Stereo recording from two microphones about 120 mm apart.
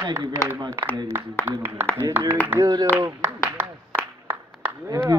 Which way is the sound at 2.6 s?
35° right (ahead or behind).